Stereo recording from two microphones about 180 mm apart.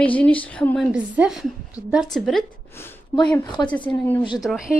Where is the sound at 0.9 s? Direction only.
5° right (ahead or behind).